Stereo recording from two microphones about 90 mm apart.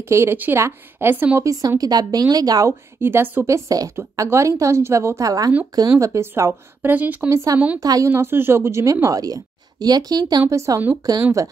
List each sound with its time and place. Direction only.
0.1 s speech: 25° right (ahead or behind)
1.4 s speech: 35° right (ahead or behind)
3.0 s a woman's voice: 25° right (ahead or behind)
6.8 s speech: 20° right (ahead or behind)
7.8 s speech: 45° right (ahead or behind)
8.1 s a woman's voice: 25° right (ahead or behind); by 10.4 s 45° right (ahead or behind)
10.5 s a woman's voice: 35° right (ahead or behind)